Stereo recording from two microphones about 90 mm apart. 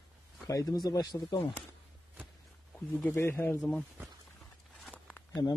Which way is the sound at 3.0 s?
20° left (ahead or behind).